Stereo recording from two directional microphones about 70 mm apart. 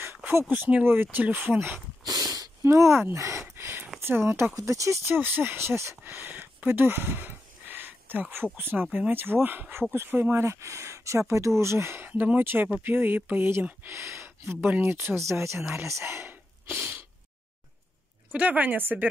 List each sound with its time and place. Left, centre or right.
0.0 s speech: right
2.0 s a sound: right
2.6 s speech: right
3.1 s a sound: right
4.0 s speech: right
4.6 s speech: right
5.1 s speech: right
6.0 s a sound: right
8.5 s speech: right
10.4 s speech: right
12.1 s speech: right
16.7 s a sound: right
18.3 s speech: right